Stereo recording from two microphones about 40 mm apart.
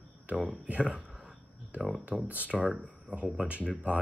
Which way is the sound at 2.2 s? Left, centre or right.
Right.